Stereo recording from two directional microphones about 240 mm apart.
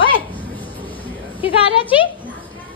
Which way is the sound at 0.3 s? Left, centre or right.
Centre.